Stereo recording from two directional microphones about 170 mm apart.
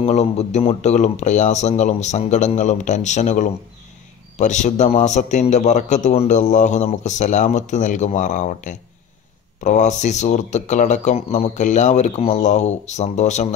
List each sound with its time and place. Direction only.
0.0 s a man's voice: 40° left (ahead or behind)